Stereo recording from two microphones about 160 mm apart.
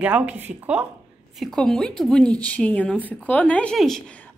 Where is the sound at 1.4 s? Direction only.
5° left (ahead or behind).